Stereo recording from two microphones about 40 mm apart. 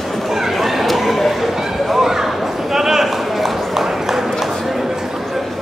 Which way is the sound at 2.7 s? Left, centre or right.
Centre.